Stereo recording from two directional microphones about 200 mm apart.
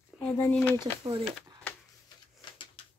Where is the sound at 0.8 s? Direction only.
20° right (ahead or behind).